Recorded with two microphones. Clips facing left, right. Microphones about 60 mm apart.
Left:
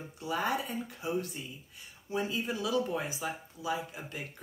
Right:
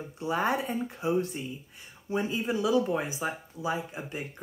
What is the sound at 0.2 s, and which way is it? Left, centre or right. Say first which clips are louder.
Speech: right 4 dB; right.